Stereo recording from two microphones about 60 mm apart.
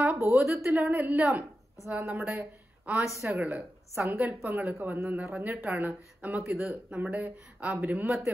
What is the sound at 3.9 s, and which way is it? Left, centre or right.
Speech, right.